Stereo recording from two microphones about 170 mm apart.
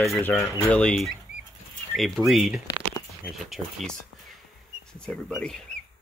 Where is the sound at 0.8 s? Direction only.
5° left (ahead or behind).